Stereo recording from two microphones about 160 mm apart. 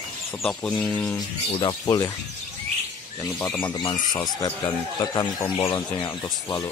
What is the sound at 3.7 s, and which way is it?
Speech, 25° left (ahead or behind).